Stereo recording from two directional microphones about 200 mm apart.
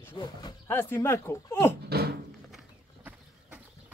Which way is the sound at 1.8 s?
50° right (ahead or behind).